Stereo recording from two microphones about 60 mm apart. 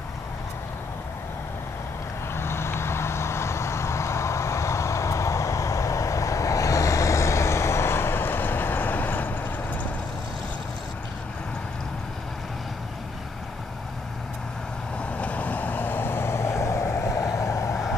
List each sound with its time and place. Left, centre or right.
2.3 s vehicle: left
15.0 s vehicle: left